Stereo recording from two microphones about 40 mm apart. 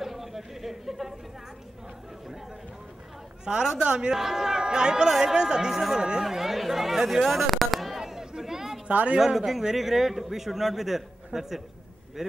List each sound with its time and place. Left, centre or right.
0.0 s chatter: centre
3.5 s speech: right
4.1 s a man's voice: centre
6.2 s chatter: centre
7.1 s a sound: centre
8.0 s a sound: centre
8.8 s a woman's voice: right
9.2 s a man's voice: centre